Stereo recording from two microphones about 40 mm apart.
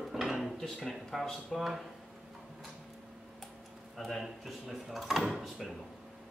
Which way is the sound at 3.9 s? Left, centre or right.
Centre.